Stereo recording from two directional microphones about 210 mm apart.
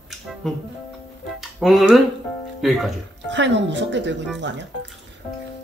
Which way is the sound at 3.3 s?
60° right (ahead or behind).